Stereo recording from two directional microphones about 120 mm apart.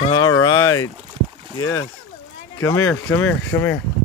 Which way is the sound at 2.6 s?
30° left (ahead or behind).